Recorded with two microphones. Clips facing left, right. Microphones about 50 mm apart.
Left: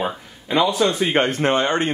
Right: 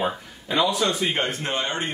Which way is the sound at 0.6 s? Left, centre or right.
Left.